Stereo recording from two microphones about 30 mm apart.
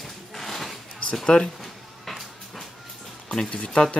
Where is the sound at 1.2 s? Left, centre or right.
Left.